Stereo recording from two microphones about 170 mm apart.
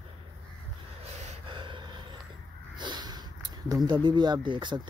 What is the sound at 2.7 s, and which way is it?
Snort, 25° right (ahead or behind).